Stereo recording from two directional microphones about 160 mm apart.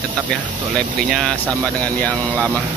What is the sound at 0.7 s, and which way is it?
Speech, centre (ahead or behind).